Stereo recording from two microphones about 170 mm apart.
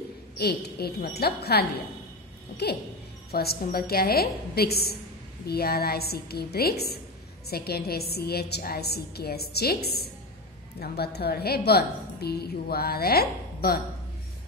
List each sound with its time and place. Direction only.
0.4 s a woman's voice: 70° left (ahead or behind)